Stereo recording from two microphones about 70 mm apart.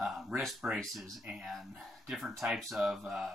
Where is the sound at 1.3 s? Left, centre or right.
Right.